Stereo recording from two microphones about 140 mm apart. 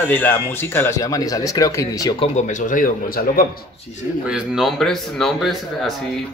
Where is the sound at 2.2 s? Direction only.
60° left (ahead or behind); by 3.5 s 85° left.